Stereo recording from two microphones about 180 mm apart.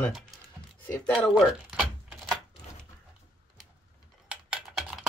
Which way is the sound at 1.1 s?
5° right (ahead or behind).